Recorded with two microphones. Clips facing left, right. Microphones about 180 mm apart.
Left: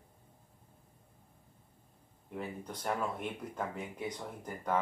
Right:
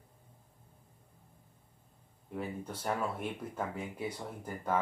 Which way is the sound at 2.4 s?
5° right (ahead or behind).